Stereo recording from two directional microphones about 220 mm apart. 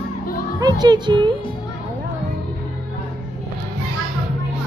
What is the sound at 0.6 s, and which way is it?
Speech, 20° right (ahead or behind).